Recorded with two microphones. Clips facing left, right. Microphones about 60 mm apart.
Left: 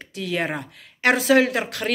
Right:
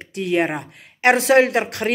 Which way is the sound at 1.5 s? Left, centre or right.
Right.